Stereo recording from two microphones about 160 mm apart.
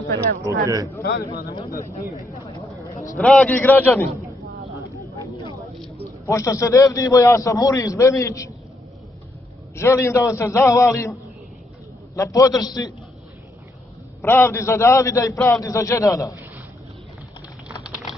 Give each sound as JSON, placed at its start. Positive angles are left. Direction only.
{"t": 0.7, "sound": "speech", "side_deg": -20}
{"t": 1.0, "sound": "speech", "side_deg": 70}
{"t": 1.7, "sound": "a man's voice", "side_deg": 20}
{"t": 2.3, "sound": "chatter", "side_deg": 20}
{"t": 2.8, "sound": "a sound", "side_deg": 20}
{"t": 3.2, "sound": "a man's voice", "side_deg": 5}
{"t": 6.2, "sound": "a man's voice", "side_deg": 20}
{"t": 9.8, "sound": "a man's voice", "side_deg": 15}
{"t": 12.2, "sound": "a man's voice", "side_deg": 20}
{"t": 14.2, "sound": "a man's voice", "side_deg": 15}